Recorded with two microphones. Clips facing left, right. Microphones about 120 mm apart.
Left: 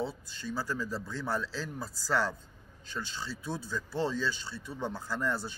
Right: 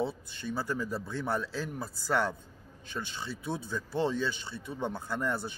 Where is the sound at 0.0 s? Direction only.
60° right (ahead or behind).